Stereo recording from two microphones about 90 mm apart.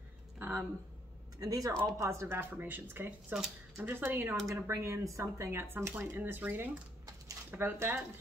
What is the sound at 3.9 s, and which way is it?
Speech, 25° right (ahead or behind).